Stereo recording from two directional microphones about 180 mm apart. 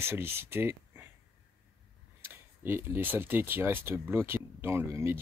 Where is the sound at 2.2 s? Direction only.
10° right (ahead or behind).